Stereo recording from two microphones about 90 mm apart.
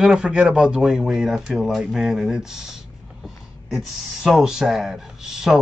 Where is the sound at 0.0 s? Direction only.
10° right (ahead or behind).